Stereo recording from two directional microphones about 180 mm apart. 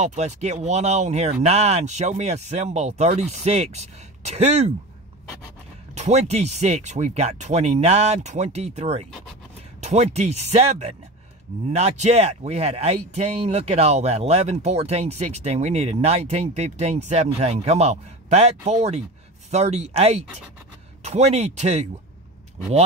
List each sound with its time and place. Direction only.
0.0 s speech: 40° right (ahead or behind)
5.9 s speech: 40° right (ahead or behind)